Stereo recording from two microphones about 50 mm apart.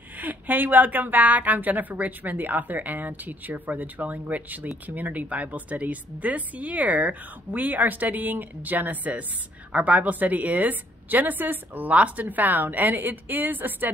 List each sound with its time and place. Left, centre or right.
0.2 s speech: right